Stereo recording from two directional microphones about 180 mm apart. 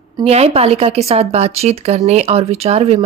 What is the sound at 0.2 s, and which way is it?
A woman's voice, 35° right (ahead or behind).